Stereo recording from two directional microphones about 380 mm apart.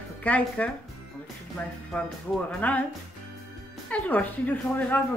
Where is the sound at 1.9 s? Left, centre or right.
Centre.